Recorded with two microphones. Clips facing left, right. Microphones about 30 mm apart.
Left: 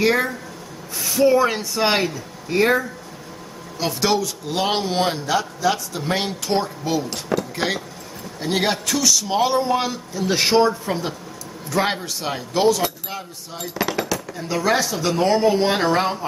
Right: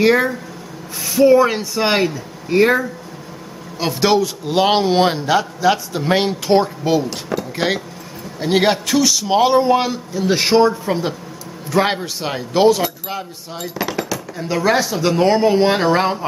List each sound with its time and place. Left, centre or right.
0.0 s a man's voice: centre
7.1 s speech: centre
7.5 s a man's voice: centre
13.7 s a sound: centre
14.4 s a man's voice: centre